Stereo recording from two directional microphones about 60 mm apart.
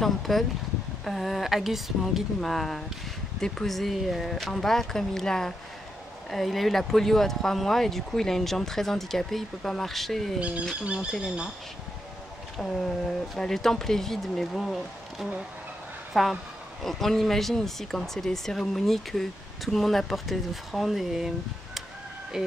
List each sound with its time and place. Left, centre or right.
0.0 s speech: centre
10.8 s speech: centre
12.5 s speech: centre